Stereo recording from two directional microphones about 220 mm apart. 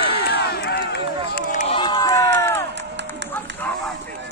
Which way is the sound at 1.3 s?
35° left (ahead or behind).